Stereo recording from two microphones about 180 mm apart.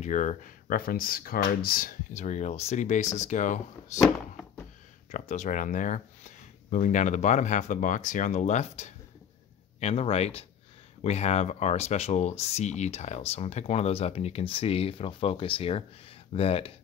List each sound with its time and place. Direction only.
0.0 s speech: 40° left (ahead or behind)
5.1 s speech: 40° left (ahead or behind)